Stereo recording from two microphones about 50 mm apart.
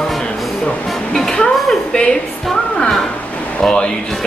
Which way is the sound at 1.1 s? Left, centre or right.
Centre.